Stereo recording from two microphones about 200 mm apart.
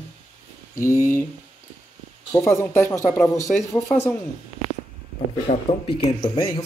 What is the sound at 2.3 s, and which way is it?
Speech, 15° left (ahead or behind).